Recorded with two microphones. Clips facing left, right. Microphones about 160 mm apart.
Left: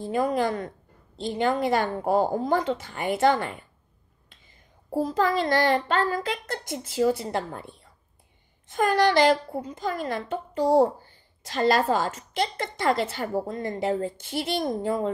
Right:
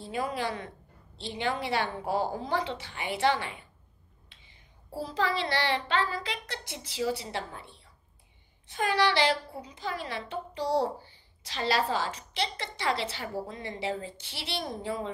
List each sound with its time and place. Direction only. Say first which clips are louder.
0.0 s a woman's voice: left 8 dB; 45° left (ahead or behind)